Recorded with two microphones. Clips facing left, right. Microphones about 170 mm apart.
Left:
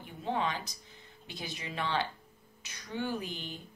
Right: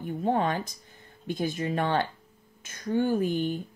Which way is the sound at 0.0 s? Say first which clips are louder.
Right 7 dB; 50° right (ahead or behind).